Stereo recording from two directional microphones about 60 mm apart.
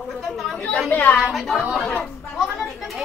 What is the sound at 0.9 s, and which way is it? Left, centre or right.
Speech, left.